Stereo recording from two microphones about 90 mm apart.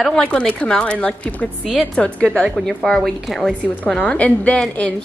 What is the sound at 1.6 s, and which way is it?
Speech, centre (ahead or behind).